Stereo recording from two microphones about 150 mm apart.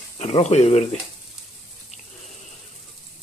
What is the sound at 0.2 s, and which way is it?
Speech, 45° left (ahead or behind).